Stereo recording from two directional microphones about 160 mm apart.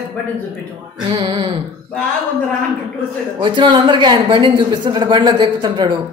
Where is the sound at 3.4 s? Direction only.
30° right (ahead or behind).